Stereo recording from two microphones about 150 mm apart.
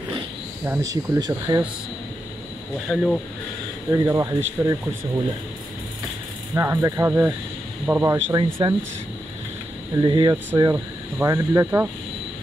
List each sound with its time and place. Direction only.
0.7 s speech: 20° right (ahead or behind)
2.9 s speech: centre (ahead or behind)
3.9 s speech: 20° right (ahead or behind)
6.5 s speech: 20° right (ahead or behind)
9.9 s speech: 30° right (ahead or behind)